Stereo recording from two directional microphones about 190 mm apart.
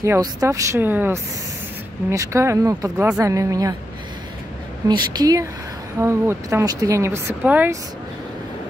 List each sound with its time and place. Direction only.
0.0 s speech: 15° right (ahead or behind)
4.8 s a woman's voice: 20° right (ahead or behind)